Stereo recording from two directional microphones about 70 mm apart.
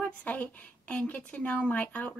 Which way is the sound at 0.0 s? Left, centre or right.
Left.